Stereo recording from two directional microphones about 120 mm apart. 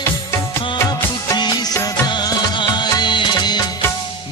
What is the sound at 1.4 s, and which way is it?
Music, 35° left (ahead or behind).